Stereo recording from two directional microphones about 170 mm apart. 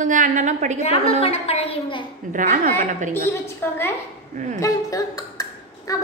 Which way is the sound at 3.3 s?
15° left (ahead or behind).